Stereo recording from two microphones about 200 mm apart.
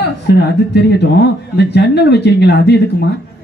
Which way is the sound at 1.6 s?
55° left (ahead or behind).